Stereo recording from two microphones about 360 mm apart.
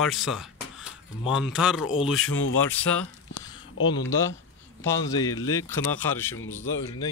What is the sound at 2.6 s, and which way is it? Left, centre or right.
Speech, centre.